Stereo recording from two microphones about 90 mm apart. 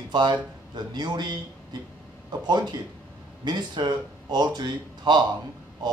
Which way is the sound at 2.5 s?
50° right (ahead or behind).